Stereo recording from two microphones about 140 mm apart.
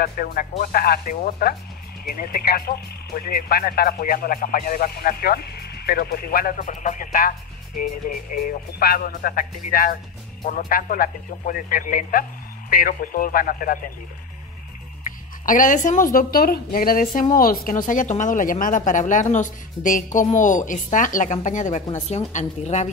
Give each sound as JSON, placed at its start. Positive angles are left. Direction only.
{"t": 0.0, "sound": "speech", "side_deg": 90}
{"t": 15.0, "sound": "a woman's voice", "side_deg": 70}